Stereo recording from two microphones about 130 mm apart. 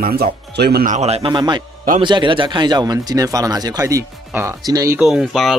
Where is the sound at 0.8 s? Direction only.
65° right (ahead or behind).